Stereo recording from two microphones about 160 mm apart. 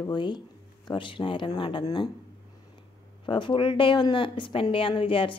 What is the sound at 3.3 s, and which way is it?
Speech, 30° left (ahead or behind).